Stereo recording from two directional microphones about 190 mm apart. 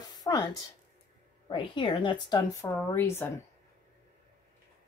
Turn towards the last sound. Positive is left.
turn(degrees=10)  # may be behind; listen again after turning